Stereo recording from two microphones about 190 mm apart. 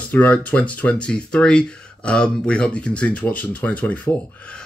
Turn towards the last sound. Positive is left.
turn(degrees=5)  # may be behind; listen again after turning